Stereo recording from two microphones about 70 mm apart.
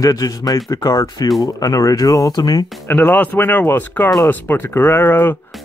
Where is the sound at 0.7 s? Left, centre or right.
Left.